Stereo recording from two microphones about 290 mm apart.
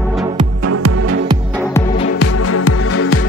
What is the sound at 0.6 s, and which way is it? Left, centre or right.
Music, right.